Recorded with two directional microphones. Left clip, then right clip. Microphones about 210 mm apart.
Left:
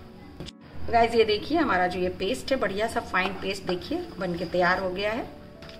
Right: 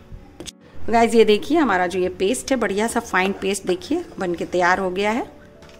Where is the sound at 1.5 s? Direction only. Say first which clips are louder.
Right 5 dB; 45° right (ahead or behind).